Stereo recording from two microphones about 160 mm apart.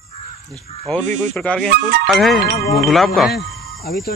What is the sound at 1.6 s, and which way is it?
Speech, 70° right (ahead or behind).